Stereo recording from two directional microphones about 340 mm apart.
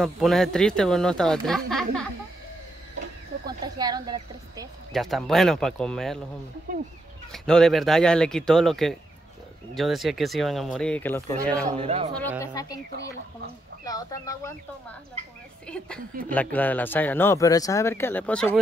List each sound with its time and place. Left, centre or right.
0.0 s speech: centre
3.6 s a woman's voice: centre
4.9 s speech: centre
7.3 s speech: centre
11.5 s a woman's voice: centre
12.4 s speech: centre
13.8 s speech: centre